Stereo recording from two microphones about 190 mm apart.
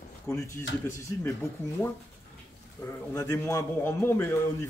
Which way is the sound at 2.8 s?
15° left (ahead or behind).